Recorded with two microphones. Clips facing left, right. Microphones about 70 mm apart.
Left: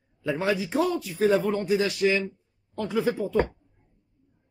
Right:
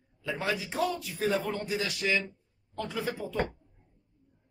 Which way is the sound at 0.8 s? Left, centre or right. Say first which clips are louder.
Left 6 dB; left.